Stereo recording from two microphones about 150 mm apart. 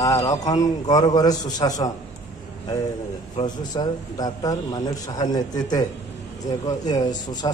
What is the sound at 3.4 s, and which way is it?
A man's voice, 30° left (ahead or behind).